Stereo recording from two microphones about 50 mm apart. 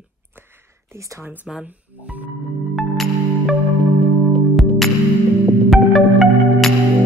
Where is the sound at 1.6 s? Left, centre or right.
Right.